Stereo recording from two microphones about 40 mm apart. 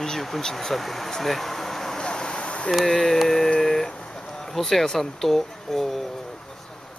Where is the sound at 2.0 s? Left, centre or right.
Centre.